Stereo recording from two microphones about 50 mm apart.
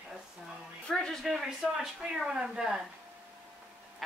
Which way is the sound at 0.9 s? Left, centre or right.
Centre.